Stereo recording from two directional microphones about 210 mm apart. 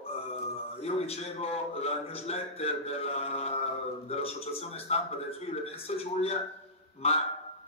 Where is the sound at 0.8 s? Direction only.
30° left (ahead or behind).